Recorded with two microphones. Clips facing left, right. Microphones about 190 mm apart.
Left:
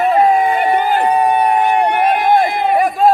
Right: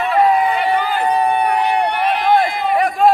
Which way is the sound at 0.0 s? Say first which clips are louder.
Left 2 dB; 45° left (ahead or behind).